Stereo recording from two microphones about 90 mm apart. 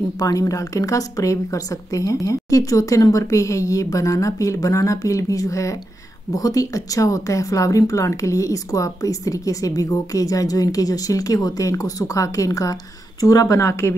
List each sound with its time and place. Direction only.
0.2 s speech: 40° left (ahead or behind)